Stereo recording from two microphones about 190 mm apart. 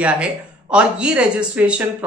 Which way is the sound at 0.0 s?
5° right (ahead or behind).